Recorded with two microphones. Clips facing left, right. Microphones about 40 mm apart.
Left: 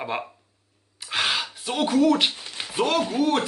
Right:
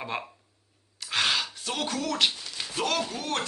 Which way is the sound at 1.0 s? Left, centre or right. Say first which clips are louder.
Left 2 dB; centre.